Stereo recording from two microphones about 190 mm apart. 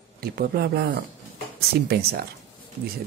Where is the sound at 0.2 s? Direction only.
55° right (ahead or behind).